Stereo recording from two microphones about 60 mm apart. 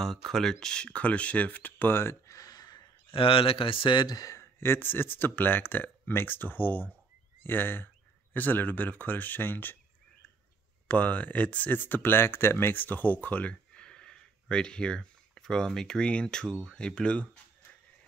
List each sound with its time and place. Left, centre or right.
0.0 s speech: centre; by 2.1 s left
2.2 s a sound: left
4.0 s speech: left
4.4 s a sound: left
4.7 s speech: left
10.9 s speech: left